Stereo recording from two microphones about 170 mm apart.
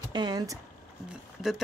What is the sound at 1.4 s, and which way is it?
Speech, centre (ahead or behind).